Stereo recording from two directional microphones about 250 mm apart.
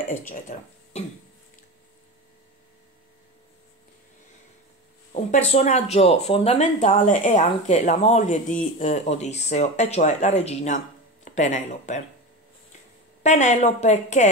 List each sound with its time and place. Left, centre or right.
0.3 s speech: left
5.1 s speech: left
13.2 s speech: left